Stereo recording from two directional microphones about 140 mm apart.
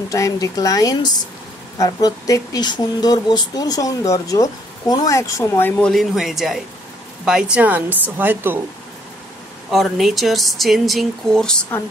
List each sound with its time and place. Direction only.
0.1 s speech: 25° left (ahead or behind); by 8.5 s 15° right (ahead or behind)
9.7 s speech: centre (ahead or behind)